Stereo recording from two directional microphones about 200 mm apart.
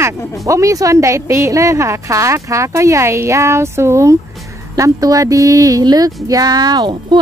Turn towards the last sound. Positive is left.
turn(degrees=-20)  # may be behind; listen again after turning